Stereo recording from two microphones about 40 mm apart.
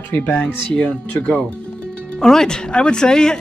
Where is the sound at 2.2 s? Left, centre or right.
Centre.